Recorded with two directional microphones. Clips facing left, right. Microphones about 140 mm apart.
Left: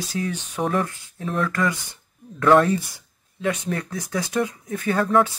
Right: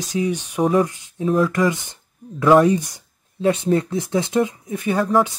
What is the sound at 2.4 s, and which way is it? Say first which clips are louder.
Speech: right 3 dB; 5° right (ahead or behind).